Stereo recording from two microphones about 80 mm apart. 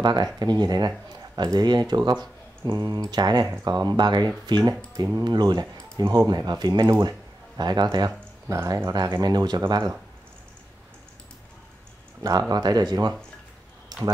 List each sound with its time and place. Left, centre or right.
0.0 s speech: right
4.9 s speech: right
5.2 s speech: right
8.6 s speech: right
8.9 s speech: right
12.2 s speech: right
13.9 s a sound: right